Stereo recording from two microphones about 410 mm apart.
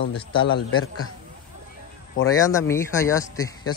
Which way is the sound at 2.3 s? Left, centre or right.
Centre.